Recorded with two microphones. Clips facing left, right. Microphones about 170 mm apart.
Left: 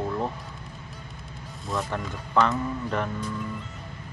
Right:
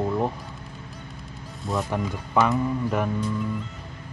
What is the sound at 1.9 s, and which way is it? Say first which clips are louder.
Speech: right 1 dB; 10° right (ahead or behind).